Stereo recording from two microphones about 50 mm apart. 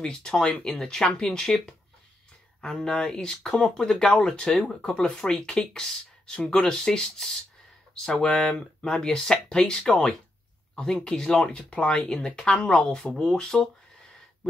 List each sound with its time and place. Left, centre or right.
0.0 s speech: centre